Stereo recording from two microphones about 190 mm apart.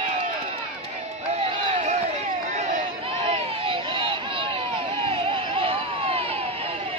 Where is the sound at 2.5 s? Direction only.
35° right (ahead or behind).